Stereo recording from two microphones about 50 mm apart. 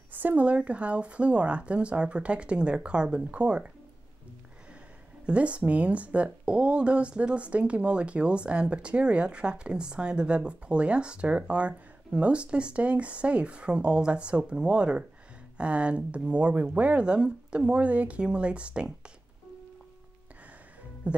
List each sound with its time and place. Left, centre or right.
0.1 s a sound: right
0.4 s speech: right
5.2 s speech: right